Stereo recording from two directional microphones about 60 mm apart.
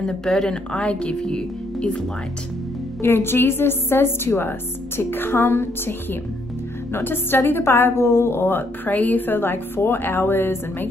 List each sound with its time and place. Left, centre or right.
0.0 s speech: centre
3.0 s a woman's voice: left